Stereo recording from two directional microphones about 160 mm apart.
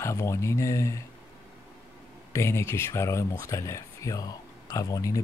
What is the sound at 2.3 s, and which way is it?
Speech, 15° left (ahead or behind).